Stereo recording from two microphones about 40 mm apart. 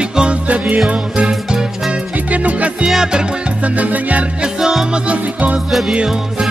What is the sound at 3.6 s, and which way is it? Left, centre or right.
Music, right.